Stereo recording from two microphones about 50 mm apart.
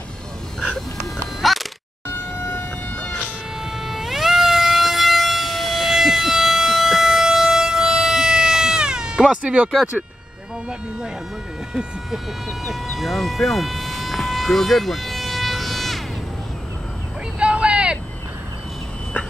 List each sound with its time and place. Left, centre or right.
0.6 s a sound: centre
2.0 s vehicle: left
3.0 s bagpipes: left
3.7 s music: centre
12.4 s vehicle: centre
17.4 s vehicle: right